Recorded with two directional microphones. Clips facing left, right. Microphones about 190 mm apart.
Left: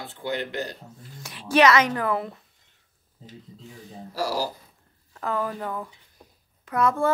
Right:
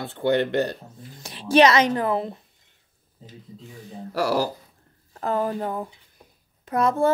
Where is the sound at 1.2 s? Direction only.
30° right (ahead or behind).